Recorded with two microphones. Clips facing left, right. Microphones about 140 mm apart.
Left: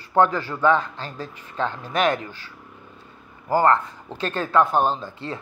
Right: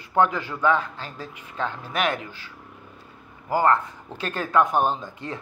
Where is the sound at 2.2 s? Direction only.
40° left (ahead or behind).